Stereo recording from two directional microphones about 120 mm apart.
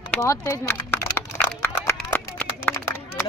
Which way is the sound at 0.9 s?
15° left (ahead or behind).